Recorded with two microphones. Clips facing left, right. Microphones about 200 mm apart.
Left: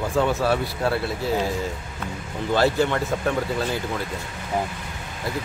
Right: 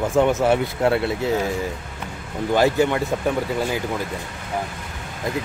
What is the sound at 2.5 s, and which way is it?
Speech, 15° right (ahead or behind).